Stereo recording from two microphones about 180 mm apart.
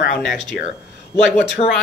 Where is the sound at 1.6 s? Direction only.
35° left (ahead or behind).